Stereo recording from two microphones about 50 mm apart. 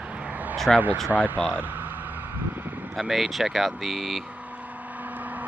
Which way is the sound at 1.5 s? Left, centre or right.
Right.